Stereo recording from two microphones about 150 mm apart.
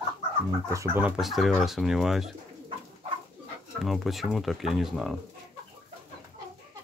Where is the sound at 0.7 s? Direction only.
20° right (ahead or behind).